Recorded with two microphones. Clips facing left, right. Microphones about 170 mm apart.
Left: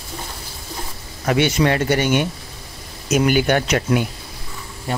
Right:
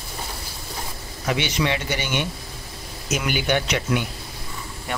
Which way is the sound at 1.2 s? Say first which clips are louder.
Left 6 dB; 50° left (ahead or behind).